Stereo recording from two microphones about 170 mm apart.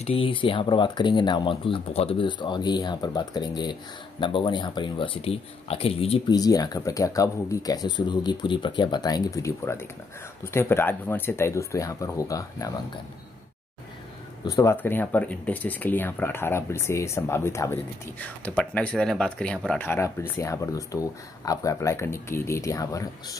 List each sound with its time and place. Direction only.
0.0 s speech: 30° left (ahead or behind)
6.3 s speech: 20° left (ahead or behind)
14.4 s speech: 20° left (ahead or behind)